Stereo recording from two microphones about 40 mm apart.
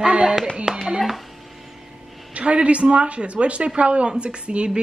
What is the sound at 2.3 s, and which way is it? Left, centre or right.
A woman's voice, right.